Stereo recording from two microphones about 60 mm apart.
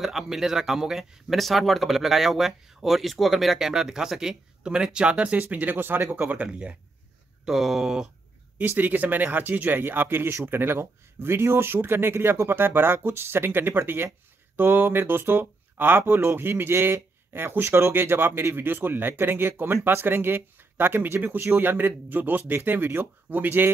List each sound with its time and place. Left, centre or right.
0.0 s speech: centre
5.5 s speech: right
6.1 s speech: right
7.4 s speech: centre
8.5 s speech: right